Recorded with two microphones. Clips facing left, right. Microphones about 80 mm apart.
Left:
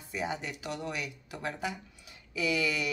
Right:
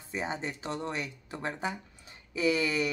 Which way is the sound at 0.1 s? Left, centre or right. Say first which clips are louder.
Right 1 dB; right.